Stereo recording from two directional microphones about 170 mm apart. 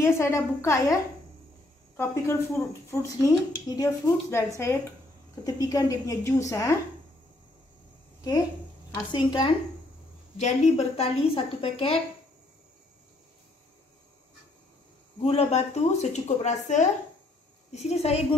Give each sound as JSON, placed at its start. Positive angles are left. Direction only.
{"t": 0.0, "sound": "speech", "side_deg": 15}
{"t": 2.0, "sound": "a woman's voice", "side_deg": 15}
{"t": 8.9, "sound": "a woman's voice", "side_deg": 25}
{"t": 10.3, "sound": "a woman's voice", "side_deg": 40}
{"t": 15.1, "sound": "a woman's voice", "side_deg": 35}